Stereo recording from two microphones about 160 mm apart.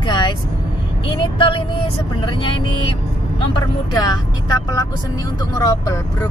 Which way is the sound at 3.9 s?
25° left (ahead or behind).